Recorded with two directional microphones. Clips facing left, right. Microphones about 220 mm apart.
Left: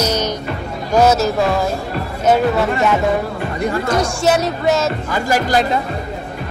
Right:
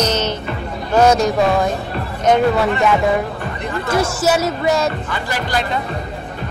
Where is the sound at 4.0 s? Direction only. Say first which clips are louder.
Right 2 dB; centre (ahead or behind).